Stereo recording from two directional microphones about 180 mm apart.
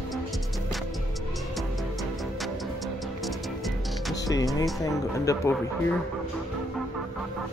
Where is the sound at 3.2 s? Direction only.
Centre (ahead or behind).